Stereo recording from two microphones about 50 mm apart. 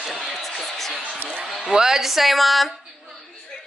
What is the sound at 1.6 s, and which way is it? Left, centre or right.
Speech, centre.